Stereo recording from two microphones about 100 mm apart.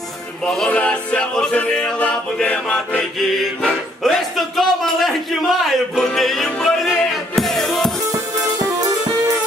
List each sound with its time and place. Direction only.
0.4 s speech: 5° left (ahead or behind)
0.7 s music: 10° left (ahead or behind)
8.1 s music: 35° right (ahead or behind)